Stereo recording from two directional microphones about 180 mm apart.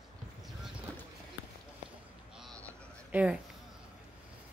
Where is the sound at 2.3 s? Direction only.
Centre (ahead or behind).